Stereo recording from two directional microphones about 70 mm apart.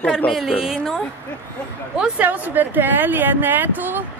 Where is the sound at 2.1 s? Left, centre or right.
Right.